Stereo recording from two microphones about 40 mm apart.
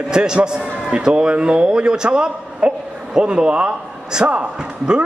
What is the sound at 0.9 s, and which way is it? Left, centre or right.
A man's voice, right.